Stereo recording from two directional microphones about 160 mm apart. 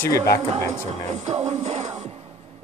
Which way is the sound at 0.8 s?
50° right (ahead or behind).